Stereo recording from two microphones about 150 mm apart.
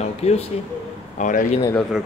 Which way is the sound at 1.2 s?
60° left (ahead or behind).